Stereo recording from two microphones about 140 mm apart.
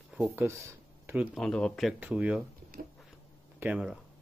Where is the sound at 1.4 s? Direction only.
5° left (ahead or behind).